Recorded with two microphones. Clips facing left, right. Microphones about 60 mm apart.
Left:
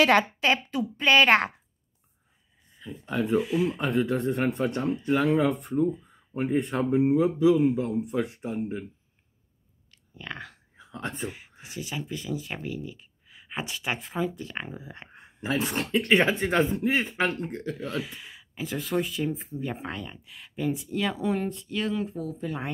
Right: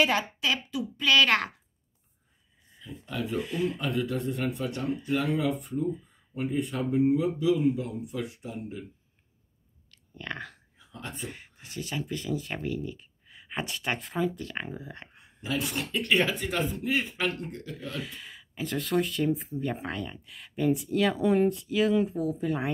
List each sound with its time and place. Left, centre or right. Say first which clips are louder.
0.0 s a woman's voice: left 5 dB; left
0.4 s speech: left 5 dB; left
2.8 s speech: left 5 dB; left
3.3 s speech: left 4 dB; centre
3.7 s speech: left 4 dB; left
4.3 s speech: left 5 dB; left
9.8 s a sound: right 1 dB; centre
10.8 s speech: left 6 dB; left
11.2 s speech: left 4 dB; centre
15.0 s a sound: left 5 dB; left
15.9 s speech: left 4 dB; left
17.9 s speech: left 4 dB; centre